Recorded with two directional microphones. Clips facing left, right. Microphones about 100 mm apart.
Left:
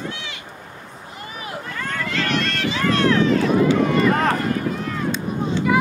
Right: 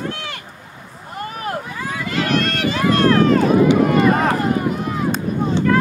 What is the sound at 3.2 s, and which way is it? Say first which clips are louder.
Run: right 4 dB; 50° right (ahead or behind).